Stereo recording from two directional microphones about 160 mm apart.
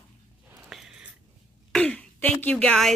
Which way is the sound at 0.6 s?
Centre (ahead or behind).